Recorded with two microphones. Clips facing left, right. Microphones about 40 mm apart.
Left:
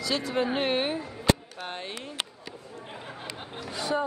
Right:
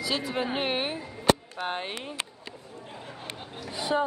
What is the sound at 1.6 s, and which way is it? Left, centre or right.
Speech, right.